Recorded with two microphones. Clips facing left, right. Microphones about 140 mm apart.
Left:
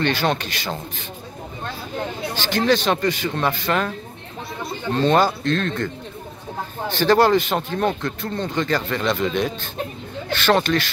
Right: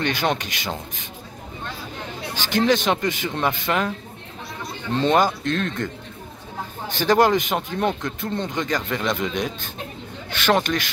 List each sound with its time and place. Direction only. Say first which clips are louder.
0.0 s speech: left 2 dB; 15° right (ahead or behind)
2.5 s speech: even; 15° right (ahead or behind)
4.9 s speech: left 1 dB; 15° right (ahead or behind)
6.9 s speech: left 2 dB; 15° right (ahead or behind)